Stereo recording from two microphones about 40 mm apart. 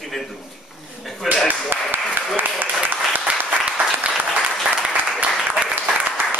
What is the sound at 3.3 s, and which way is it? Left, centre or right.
Applause, right.